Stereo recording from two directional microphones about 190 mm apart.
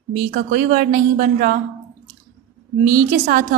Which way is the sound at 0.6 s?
45° right (ahead or behind).